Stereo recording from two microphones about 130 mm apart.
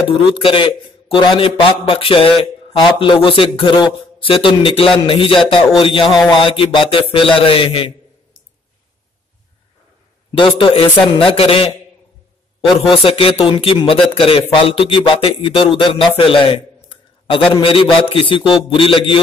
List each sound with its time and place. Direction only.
0.1 s speech: 45° left (ahead or behind)
10.3 s speech: 40° left (ahead or behind)
12.9 s a man's voice: 45° left (ahead or behind)